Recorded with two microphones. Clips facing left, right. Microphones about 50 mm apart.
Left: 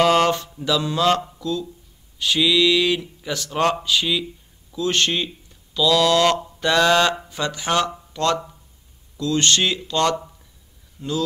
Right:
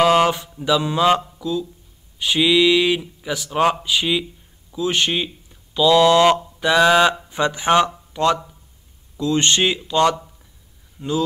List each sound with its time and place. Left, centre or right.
0.0 s mantra: centre
1.4 s speech: centre